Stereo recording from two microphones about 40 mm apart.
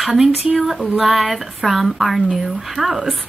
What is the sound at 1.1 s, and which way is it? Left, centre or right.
Speech, centre.